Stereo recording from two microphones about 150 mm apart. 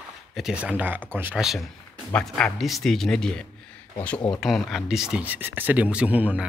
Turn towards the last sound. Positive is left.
turn(degrees=-10)  # may be behind; listen again after turning